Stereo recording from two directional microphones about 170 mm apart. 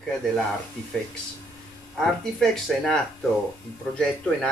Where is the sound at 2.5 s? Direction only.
5° left (ahead or behind).